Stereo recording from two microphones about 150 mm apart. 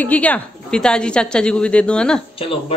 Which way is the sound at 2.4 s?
40° left (ahead or behind).